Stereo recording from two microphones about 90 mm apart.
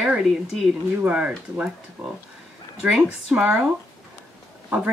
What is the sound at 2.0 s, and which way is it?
Speech, 30° right (ahead or behind).